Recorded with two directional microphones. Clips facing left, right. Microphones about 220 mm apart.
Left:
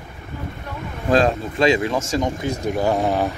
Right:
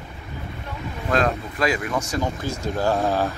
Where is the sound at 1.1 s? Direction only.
30° left (ahead or behind).